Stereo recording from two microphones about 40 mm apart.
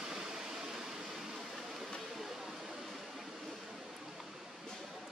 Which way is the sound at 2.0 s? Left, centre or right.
Centre.